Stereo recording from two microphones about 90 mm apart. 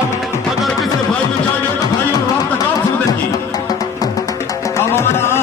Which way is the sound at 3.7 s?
40° left (ahead or behind).